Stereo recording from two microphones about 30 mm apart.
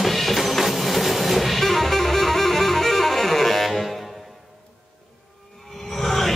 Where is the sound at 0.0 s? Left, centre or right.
Centre.